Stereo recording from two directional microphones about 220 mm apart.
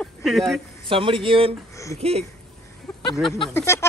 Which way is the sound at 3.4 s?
10° left (ahead or behind).